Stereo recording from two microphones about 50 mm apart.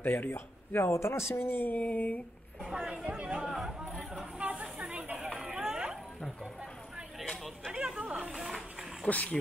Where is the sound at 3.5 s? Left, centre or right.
Centre.